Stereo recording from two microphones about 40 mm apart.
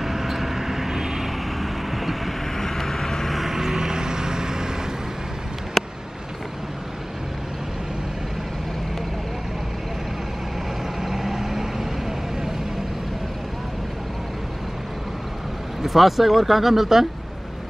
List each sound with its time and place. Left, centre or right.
0.0 s vehicle: centre
2.5 s vehicle: centre
3.3 s vehicle: centre
3.5 s vehicle: centre
5.8 s vehicle: centre
11.0 s vehicle: centre
15.8 s speech: centre